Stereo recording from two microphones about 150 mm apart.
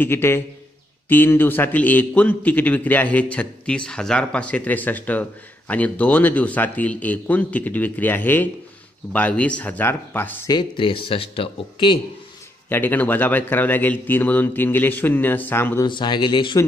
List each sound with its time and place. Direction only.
0.0 s a man's voice: 15° left (ahead or behind)
10.5 s speech: 30° left (ahead or behind)
12.6 s a man's voice: 15° left (ahead or behind)
15.9 s speech: 30° left (ahead or behind)